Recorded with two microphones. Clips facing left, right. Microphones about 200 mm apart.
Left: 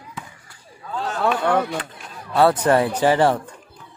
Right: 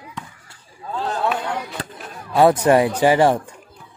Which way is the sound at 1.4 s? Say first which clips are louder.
Left 7 dB; 60° left (ahead or behind).